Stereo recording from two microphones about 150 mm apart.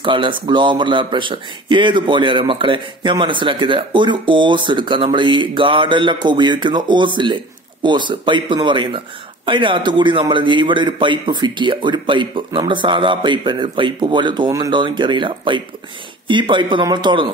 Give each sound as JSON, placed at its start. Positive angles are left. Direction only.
{"t": 0.0, "sound": "a man's voice", "side_deg": -35}